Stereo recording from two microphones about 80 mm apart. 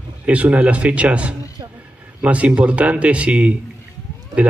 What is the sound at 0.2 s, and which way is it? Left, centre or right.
Speech, centre.